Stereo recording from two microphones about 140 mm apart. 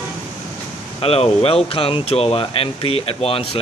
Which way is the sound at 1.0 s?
45° left (ahead or behind).